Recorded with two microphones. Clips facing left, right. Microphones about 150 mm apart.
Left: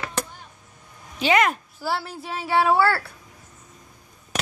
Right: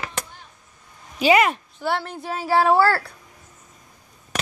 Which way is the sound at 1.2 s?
10° right (ahead or behind).